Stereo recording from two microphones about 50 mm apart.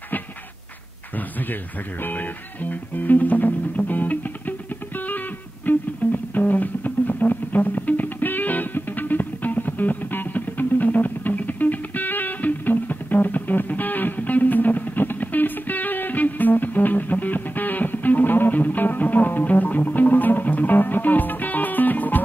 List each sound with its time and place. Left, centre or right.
1.1 s speech: left
5.7 s music: left